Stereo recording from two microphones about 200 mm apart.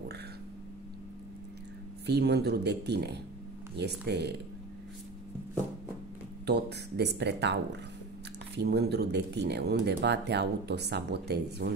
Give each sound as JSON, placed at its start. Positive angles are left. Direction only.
{"t": 2.0, "sound": "speech", "side_deg": -55}
{"t": 6.4, "sound": "speech", "side_deg": -55}
{"t": 8.5, "sound": "speech", "side_deg": -55}